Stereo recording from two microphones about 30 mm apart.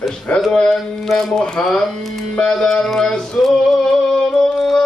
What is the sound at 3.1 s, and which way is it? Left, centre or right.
Speech, left.